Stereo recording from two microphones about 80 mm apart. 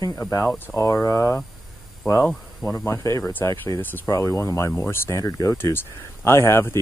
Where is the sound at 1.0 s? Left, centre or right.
Left.